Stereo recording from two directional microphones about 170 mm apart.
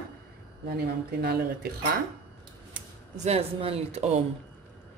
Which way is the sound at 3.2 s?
40° right (ahead or behind).